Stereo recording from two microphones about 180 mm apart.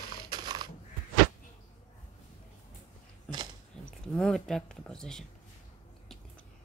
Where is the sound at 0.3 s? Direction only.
25° right (ahead or behind).